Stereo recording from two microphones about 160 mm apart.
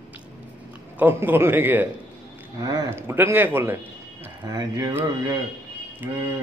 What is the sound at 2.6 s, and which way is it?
Speech, 25° right (ahead or behind).